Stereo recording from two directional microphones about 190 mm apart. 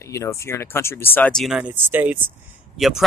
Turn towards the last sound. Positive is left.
turn(degrees=0)  # may be behind; listen again after turning